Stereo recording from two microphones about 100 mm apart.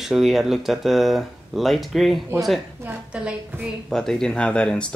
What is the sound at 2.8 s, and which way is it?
Speech, 10° right (ahead or behind).